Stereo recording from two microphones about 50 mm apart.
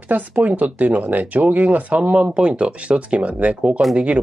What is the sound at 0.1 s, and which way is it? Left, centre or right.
Speech, right.